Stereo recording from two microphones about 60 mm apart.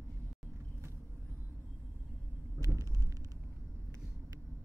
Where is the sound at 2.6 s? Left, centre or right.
Right.